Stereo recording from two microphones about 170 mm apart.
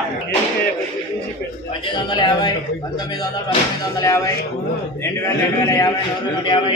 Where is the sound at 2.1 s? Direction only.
25° left (ahead or behind).